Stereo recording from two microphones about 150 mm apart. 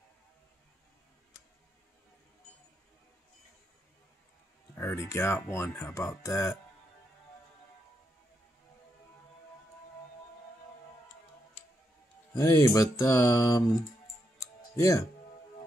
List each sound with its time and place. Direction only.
4.7 s speech: 20° left (ahead or behind)
12.4 s speech: 20° left (ahead or behind)
14.4 s music: 20° left (ahead or behind)